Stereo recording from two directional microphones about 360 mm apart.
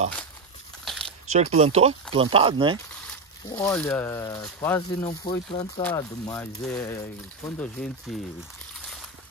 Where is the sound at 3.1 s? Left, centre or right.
Centre.